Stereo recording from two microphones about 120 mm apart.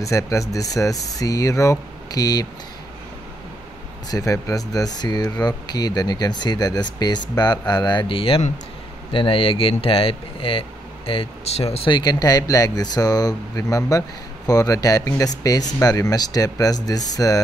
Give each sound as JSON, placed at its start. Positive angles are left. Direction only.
{"t": 0.0, "sound": "speech", "side_deg": 25}
{"t": 4.1, "sound": "speech", "side_deg": 30}
{"t": 11.9, "sound": "speech", "side_deg": 35}